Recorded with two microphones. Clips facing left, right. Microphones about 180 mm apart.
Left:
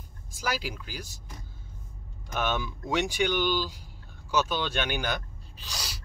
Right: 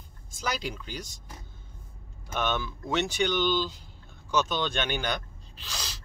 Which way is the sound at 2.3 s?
10° left (ahead or behind).